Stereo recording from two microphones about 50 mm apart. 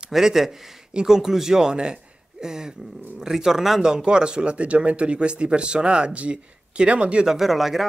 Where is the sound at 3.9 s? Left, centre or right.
Centre.